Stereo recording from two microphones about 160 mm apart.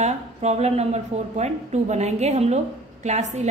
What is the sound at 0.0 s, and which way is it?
A woman's voice, 45° right (ahead or behind).